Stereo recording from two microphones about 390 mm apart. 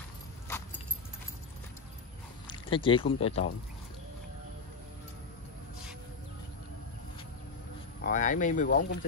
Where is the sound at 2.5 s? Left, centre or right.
Centre.